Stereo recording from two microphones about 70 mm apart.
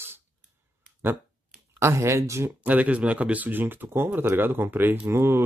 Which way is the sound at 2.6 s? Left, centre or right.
Right.